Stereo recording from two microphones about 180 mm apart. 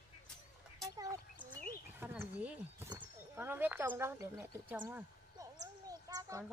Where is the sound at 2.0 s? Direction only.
10° right (ahead or behind).